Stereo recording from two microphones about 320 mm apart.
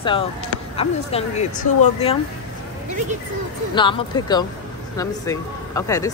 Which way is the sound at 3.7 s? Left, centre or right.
Centre.